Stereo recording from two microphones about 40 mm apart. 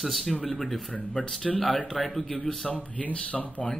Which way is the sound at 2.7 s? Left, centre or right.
Left.